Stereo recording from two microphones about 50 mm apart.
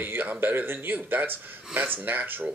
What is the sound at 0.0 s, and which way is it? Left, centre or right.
Speech, right.